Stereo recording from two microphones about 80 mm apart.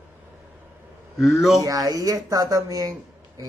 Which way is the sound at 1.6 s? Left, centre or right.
Right.